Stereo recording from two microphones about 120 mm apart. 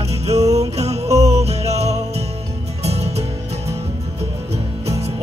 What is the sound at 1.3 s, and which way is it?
Music, 60° right (ahead or behind).